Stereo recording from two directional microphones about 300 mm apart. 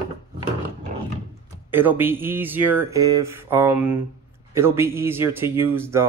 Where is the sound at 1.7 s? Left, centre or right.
Centre.